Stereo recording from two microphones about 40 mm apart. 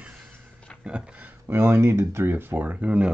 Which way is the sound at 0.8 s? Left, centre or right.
Right.